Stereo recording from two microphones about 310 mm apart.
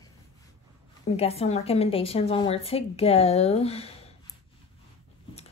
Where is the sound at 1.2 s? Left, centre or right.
Centre.